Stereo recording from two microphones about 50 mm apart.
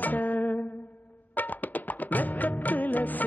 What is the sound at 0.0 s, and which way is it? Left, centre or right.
Music, left.